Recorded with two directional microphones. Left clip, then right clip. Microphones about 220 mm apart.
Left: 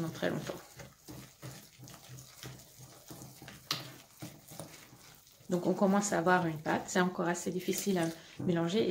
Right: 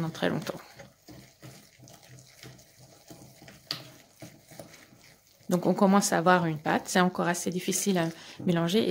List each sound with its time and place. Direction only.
0.1 s speech: 45° right (ahead or behind)
4.6 s dog: 5° right (ahead or behind)
5.5 s speech: 45° right (ahead or behind)